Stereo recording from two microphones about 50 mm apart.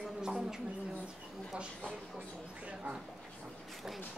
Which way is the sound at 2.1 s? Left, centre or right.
Right.